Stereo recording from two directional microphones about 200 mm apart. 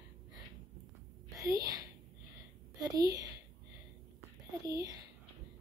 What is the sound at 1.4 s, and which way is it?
A woman's voice, 15° right (ahead or behind).